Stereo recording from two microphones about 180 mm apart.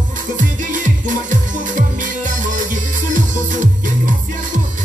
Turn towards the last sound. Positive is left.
turn(degrees=-45)  # may be behind; listen again after turning